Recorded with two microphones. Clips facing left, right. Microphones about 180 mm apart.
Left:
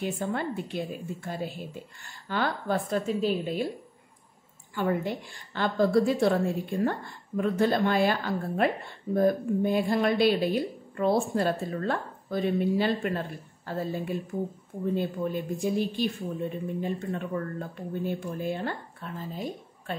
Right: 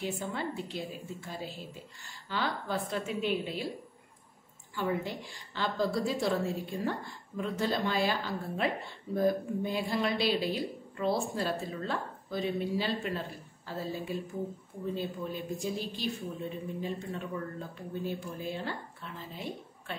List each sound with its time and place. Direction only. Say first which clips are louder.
0.0 s a woman's voice: left 5 dB; 55° left (ahead or behind)
4.7 s a woman's voice: left 5 dB; 55° left (ahead or behind)